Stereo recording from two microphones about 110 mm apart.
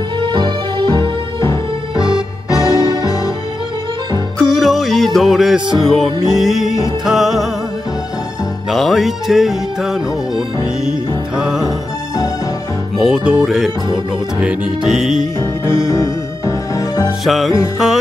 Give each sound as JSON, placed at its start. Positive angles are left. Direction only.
{"t": 0.2, "sound": "music", "side_deg": -45}
{"t": 2.0, "sound": "music", "side_deg": -5}
{"t": 2.5, "sound": "music", "side_deg": 35}
{"t": 4.4, "sound": "music", "side_deg": 5}
{"t": 8.6, "sound": "music", "side_deg": 0}
{"t": 12.9, "sound": "music", "side_deg": 0}
{"t": 15.9, "sound": "music", "side_deg": 30}
{"t": 17.2, "sound": "music", "side_deg": 0}